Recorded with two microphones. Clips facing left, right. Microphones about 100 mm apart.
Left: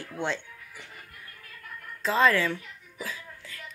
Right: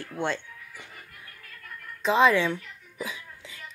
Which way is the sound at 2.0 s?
10° right (ahead or behind).